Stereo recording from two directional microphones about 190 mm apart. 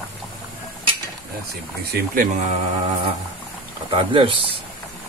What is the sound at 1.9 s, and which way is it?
Speech, 50° right (ahead or behind).